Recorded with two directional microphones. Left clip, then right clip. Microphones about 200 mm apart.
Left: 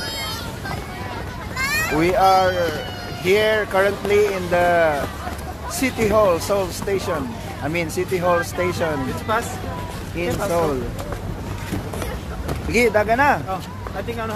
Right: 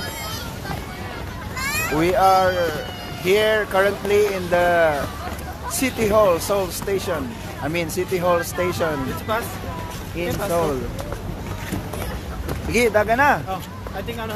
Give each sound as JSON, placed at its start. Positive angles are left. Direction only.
{"t": 1.6, "sound": "a sound", "side_deg": 45}
{"t": 2.0, "sound": "speech", "side_deg": -5}
{"t": 10.1, "sound": "speech", "side_deg": 0}
{"t": 12.7, "sound": "speech", "side_deg": -5}